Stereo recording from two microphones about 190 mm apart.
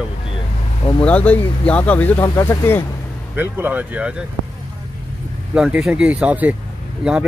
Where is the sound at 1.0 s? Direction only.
5° left (ahead or behind).